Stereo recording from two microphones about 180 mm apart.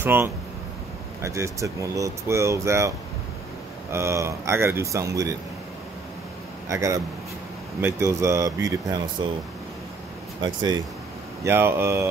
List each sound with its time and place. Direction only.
0.0 s speech: 10° right (ahead or behind)
3.9 s speech: 15° right (ahead or behind)
6.7 s speech: 15° right (ahead or behind)
10.4 s speech: 25° right (ahead or behind)